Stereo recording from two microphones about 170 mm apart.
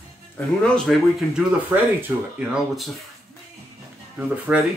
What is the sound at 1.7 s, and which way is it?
Speech, 15° right (ahead or behind).